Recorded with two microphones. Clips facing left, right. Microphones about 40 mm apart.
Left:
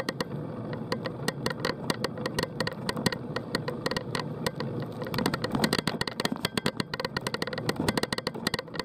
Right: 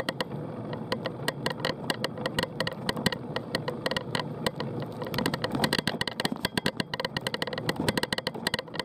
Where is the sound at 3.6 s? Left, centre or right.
Right.